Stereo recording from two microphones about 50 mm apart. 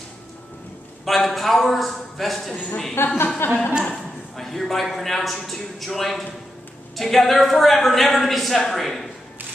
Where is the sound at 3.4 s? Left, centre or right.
Left.